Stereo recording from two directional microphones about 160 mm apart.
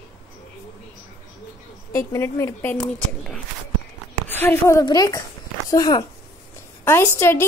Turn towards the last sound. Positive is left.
turn(degrees=15)  # may be behind; listen again after turning